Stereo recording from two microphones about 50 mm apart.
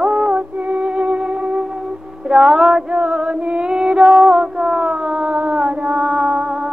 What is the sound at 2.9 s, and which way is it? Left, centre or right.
Music, right.